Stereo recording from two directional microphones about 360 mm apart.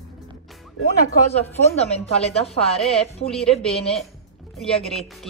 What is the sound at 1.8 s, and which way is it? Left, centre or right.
A woman's voice, centre.